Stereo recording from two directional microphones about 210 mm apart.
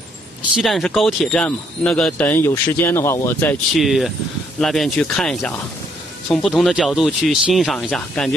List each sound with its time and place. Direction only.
0.6 s speech: centre (ahead or behind)
3.7 s speech: centre (ahead or behind)